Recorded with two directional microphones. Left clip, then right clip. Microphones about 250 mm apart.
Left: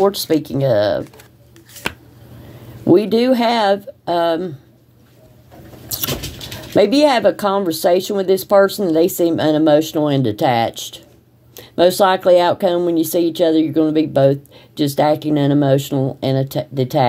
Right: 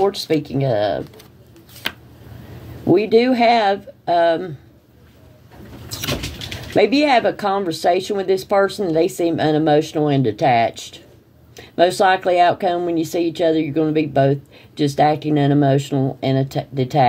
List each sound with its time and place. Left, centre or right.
0.0 s speech: left
2.9 s speech: left
6.7 s speech: left